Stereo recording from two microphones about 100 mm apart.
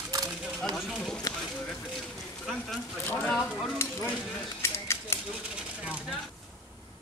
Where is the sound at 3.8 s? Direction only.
25° left (ahead or behind).